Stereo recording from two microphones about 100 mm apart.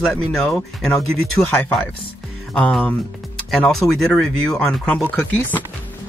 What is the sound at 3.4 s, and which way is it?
Speech, 5° left (ahead or behind).